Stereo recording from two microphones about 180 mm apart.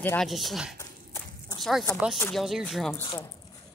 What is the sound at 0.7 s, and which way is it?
Walk, 20° left (ahead or behind).